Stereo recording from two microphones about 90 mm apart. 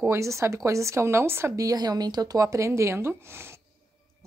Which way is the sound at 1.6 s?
45° right (ahead or behind).